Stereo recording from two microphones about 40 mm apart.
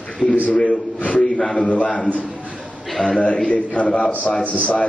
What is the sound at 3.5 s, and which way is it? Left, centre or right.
Speech, left.